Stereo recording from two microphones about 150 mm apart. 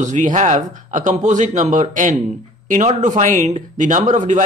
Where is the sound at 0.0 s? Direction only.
55° right (ahead or behind).